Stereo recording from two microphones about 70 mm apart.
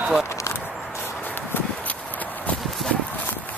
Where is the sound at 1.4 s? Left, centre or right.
Left.